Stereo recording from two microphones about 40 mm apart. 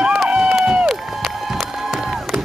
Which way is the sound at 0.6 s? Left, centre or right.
Right.